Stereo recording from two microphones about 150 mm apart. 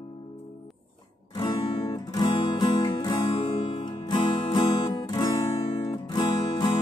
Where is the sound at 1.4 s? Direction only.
30° left (ahead or behind).